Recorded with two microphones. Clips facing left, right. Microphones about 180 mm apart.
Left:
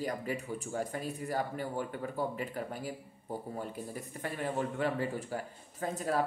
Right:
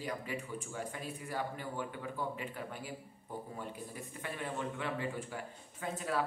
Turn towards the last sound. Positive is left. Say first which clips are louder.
# left 4 dB
turn(degrees=40)  # may be behind; listen again after turning